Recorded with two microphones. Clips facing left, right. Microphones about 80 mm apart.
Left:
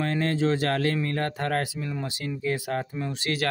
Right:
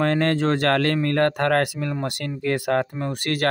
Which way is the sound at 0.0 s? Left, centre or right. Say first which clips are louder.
Right 5 dB; right.